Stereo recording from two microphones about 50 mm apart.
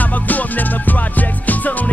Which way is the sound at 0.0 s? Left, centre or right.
Left.